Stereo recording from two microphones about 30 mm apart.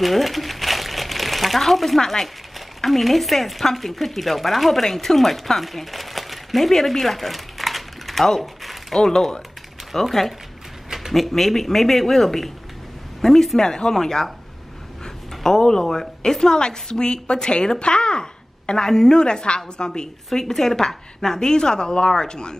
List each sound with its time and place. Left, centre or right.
0.0 s crumpling: centre
2.8 s speech: centre
9.0 s speech: centre
11.1 s speech: centre
13.7 s a woman's voice: left
15.4 s a woman's voice: centre
20.3 s a woman's voice: centre